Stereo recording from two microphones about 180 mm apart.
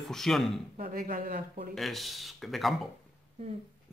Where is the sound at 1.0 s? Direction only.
55° right (ahead or behind).